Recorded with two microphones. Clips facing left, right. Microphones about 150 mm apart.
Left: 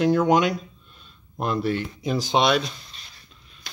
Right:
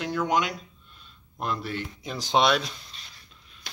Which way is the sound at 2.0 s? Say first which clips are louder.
Left 1 dB; 10° left (ahead or behind).